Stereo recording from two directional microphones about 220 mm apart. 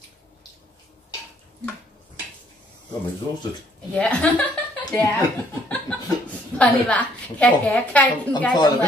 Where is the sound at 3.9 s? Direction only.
5° left (ahead or behind).